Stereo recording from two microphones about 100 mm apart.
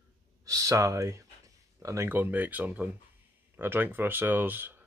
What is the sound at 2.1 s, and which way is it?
Speech, 20° right (ahead or behind).